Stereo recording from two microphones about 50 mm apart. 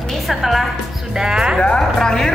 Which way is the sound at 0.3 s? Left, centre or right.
Centre.